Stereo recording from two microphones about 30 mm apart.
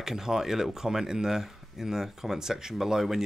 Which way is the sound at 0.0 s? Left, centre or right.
Centre.